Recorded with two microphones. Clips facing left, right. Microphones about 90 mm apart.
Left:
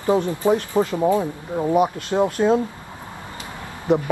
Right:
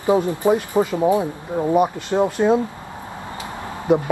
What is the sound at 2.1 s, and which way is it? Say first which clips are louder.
Speech: right 1 dB; 10° right (ahead or behind).